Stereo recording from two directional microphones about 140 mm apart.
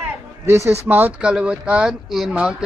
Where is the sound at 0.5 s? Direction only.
20° right (ahead or behind).